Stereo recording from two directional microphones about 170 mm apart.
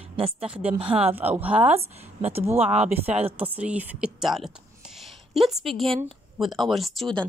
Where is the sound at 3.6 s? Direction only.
10° right (ahead or behind).